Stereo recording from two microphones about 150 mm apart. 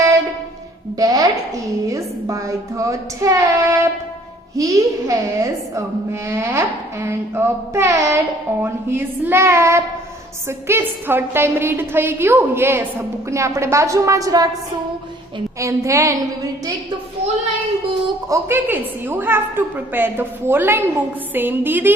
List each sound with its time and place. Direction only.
0.9 s a sound: 25° right (ahead or behind)
1.9 s a woman's voice: 20° right (ahead or behind)
15.6 s a woman's voice: 20° right (ahead or behind)
18.3 s a woman's voice: 15° right (ahead or behind)